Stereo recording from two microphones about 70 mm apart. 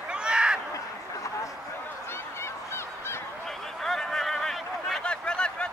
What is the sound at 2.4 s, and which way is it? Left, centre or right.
Fowl, left.